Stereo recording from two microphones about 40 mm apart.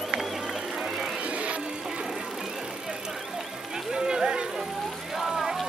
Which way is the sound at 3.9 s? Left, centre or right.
Centre.